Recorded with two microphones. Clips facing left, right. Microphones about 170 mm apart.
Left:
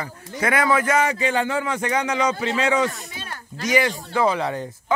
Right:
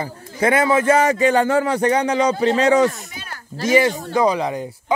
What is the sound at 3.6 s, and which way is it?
Speech, 25° right (ahead or behind).